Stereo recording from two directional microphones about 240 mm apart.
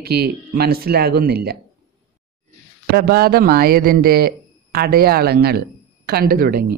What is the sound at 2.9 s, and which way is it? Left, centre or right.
A woman's voice, right.